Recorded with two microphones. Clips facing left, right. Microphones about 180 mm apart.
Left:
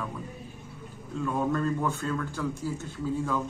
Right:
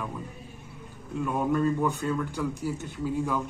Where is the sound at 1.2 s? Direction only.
15° right (ahead or behind).